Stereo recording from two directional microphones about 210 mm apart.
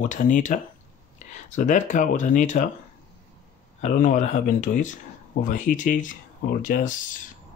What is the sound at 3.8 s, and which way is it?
Speech, 35° left (ahead or behind).